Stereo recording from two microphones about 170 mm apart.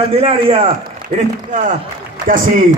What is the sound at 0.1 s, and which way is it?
Speech, 35° right (ahead or behind).